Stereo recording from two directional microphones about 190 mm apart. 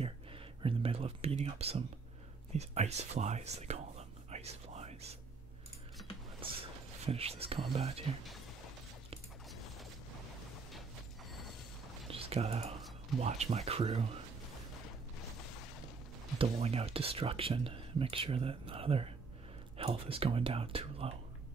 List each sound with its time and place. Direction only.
0.0 s speech: 30° right (ahead or behind)
4.3 s whispering: 35° right (ahead or behind)
7.1 s speech: 30° right (ahead or behind)
12.1 s a sound: 30° right (ahead or behind)
13.2 s speech: 35° right (ahead or behind)
16.3 s speech: 30° right (ahead or behind)